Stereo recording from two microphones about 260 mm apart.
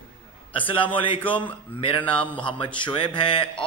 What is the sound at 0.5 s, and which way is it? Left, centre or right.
Speech, centre.